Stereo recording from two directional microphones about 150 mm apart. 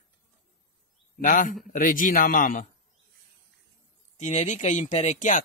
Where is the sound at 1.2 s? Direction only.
60° left (ahead or behind).